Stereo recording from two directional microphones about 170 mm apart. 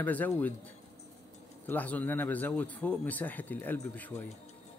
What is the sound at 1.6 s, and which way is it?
Speech, 10° left (ahead or behind).